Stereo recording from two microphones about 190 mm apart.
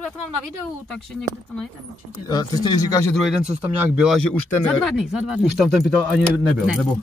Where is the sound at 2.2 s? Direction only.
20° left (ahead or behind).